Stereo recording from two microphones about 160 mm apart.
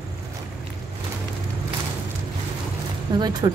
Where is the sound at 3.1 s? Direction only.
25° right (ahead or behind).